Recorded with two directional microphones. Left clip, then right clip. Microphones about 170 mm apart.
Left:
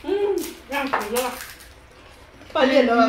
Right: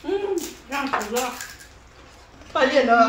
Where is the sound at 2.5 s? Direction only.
5° right (ahead or behind).